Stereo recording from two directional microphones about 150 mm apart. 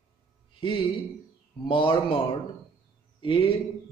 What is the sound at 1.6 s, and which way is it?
Music, 35° left (ahead or behind).